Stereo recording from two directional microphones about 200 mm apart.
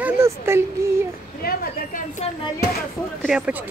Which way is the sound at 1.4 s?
50° left (ahead or behind).